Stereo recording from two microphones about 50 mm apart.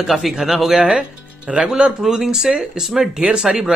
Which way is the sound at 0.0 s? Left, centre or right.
Centre.